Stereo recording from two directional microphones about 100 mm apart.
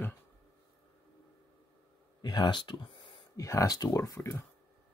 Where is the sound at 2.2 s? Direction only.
45° left (ahead or behind).